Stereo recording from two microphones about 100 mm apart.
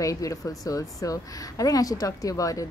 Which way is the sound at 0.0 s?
35° left (ahead or behind).